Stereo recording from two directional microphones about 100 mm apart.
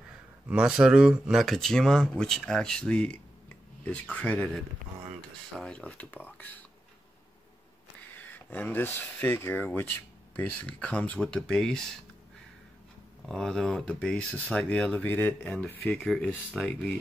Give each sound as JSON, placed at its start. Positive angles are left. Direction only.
{"t": 0.5, "sound": "speech", "side_deg": -10}
{"t": 1.4, "sound": "speech", "side_deg": 5}
{"t": 5.6, "sound": "speech", "side_deg": 10}
{"t": 8.2, "sound": "speech", "side_deg": 15}
{"t": 13.3, "sound": "speech", "side_deg": 5}
{"t": 15.9, "sound": "speech", "side_deg": 0}
{"t": 16.6, "sound": "speech", "side_deg": 10}